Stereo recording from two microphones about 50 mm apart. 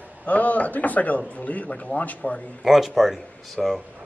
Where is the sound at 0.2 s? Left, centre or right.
Left.